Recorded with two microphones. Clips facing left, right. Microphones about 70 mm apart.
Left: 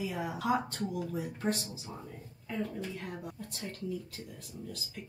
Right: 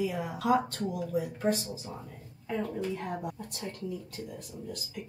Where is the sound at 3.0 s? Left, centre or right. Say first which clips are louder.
Right 6 dB; right.